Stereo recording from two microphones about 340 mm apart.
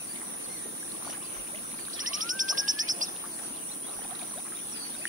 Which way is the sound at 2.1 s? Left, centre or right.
Right.